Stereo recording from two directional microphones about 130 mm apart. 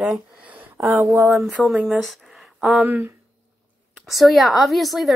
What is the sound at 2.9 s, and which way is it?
Speech, 15° right (ahead or behind).